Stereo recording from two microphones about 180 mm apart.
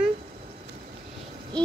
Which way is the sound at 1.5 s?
5° left (ahead or behind).